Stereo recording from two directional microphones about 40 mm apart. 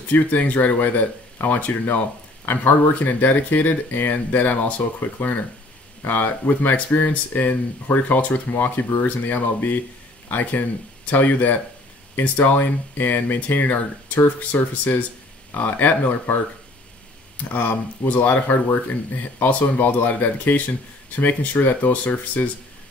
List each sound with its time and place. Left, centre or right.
0.1 s speech: left
6.7 s a man's voice: left
17.5 s speech: left